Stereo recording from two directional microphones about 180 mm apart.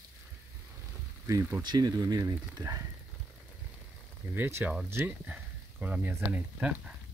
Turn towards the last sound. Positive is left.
turn(degrees=-10)  # may be behind; listen again after turning